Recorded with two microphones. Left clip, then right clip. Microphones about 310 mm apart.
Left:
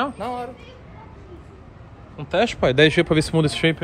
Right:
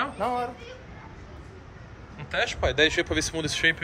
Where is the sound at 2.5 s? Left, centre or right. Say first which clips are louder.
Left 6 dB; left.